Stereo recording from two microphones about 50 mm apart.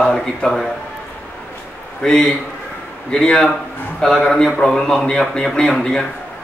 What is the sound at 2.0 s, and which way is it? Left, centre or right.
A man's voice, centre.